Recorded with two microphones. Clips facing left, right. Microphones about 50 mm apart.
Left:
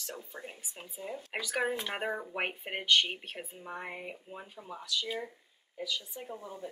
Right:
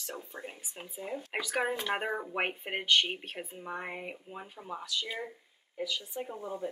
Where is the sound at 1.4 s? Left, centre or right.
Centre.